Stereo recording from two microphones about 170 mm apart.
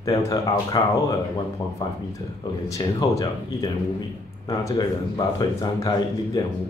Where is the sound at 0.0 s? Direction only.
20° left (ahead or behind).